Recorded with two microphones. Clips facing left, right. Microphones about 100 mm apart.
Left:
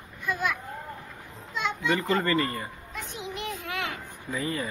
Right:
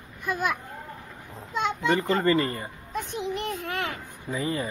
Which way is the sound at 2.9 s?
45° right (ahead or behind).